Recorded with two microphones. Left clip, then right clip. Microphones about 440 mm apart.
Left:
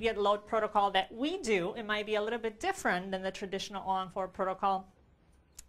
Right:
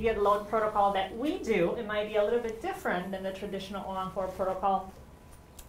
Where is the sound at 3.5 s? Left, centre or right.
Left.